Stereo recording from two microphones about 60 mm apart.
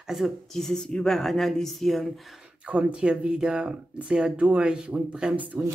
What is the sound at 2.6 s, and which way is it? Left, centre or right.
Speech, centre.